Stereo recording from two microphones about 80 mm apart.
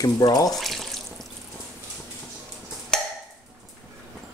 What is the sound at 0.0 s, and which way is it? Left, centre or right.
Speech, left.